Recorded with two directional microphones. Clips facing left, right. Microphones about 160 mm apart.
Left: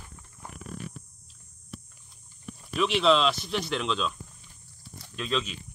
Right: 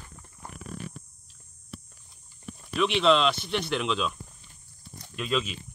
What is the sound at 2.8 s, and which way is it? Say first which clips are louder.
Speech: even; centre (ahead or behind).